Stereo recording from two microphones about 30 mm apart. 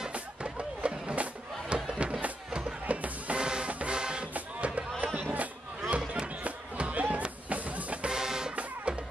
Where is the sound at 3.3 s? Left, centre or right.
Right.